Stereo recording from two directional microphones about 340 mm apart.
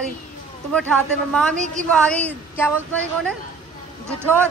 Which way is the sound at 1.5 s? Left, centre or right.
Right.